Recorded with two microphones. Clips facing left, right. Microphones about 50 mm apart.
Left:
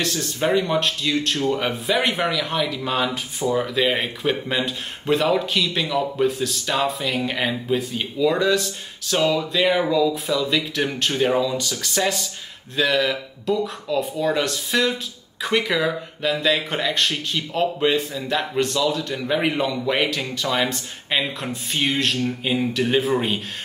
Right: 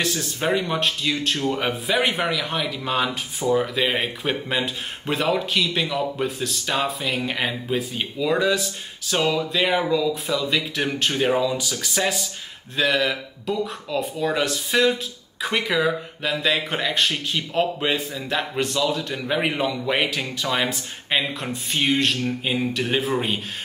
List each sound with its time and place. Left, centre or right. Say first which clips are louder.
0.0 s speech: left 1 dB; centre